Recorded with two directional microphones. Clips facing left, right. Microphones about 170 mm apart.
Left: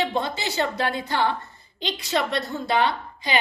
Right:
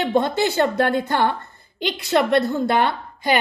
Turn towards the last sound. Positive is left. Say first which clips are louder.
# right 5 dB
turn(degrees=-55)  # may be behind; listen again after turning